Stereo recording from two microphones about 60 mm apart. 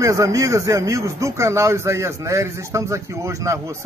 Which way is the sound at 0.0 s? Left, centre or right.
Right.